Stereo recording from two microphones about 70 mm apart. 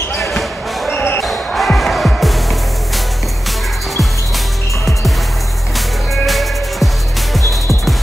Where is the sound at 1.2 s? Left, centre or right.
Centre.